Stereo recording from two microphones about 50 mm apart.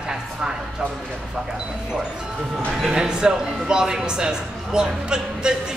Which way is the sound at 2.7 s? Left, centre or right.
Centre.